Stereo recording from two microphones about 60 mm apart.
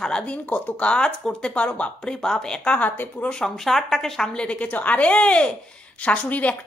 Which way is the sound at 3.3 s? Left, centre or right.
Centre.